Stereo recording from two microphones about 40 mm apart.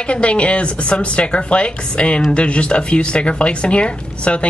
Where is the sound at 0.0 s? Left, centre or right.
Left.